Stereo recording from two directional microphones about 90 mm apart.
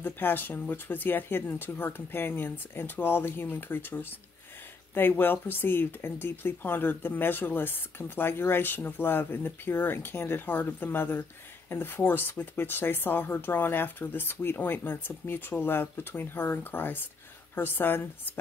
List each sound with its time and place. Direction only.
0.0 s speech: 25° left (ahead or behind)